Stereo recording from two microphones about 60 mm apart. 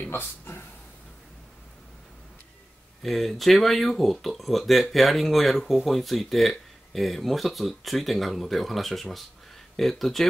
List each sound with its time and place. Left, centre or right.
0.1 s speech: left
3.0 s speech: centre